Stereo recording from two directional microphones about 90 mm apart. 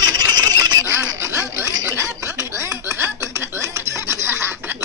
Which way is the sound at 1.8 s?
30° right (ahead or behind).